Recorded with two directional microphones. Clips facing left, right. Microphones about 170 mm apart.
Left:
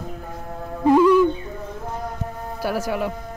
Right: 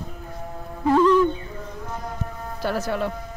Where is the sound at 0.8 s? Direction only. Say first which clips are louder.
Left 3 dB; 10° left (ahead or behind).